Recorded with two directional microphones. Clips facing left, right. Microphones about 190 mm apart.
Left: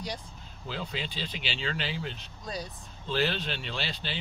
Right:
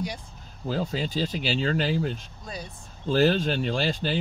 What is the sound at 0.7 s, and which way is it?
Speech, 40° right (ahead or behind).